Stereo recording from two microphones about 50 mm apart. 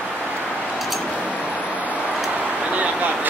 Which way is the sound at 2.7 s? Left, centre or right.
Right.